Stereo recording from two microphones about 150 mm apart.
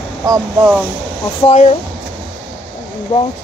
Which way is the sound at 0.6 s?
5° right (ahead or behind).